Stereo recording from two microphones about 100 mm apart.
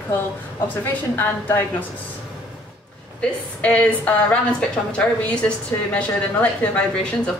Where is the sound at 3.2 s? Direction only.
10° left (ahead or behind).